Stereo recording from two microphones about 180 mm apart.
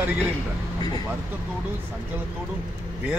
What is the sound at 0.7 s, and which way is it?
Vehicle, 25° left (ahead or behind).